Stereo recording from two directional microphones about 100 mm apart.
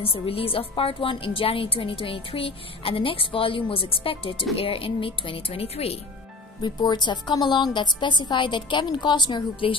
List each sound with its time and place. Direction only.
0.0 s a woman's voice: 70° left (ahead or behind)
6.6 s a woman's voice: 50° left (ahead or behind)